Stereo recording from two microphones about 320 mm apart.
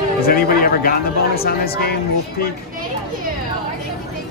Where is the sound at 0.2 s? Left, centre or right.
Left.